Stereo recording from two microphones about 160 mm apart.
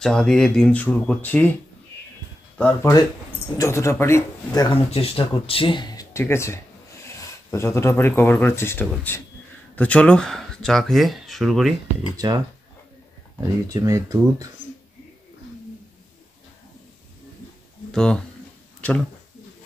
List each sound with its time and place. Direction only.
0.0 s speech: 5° left (ahead or behind)
2.8 s speech: 20° left (ahead or behind)
4.6 s speech: 35° left (ahead or behind); by 11.7 s centre (ahead or behind)
12.2 s speech: 25° right (ahead or behind)
17.9 s speech: 5° left (ahead or behind)